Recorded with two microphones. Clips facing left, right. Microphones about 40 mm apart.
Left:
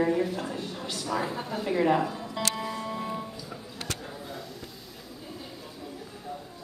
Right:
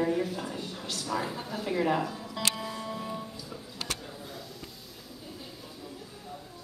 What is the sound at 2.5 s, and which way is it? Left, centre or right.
Music, centre.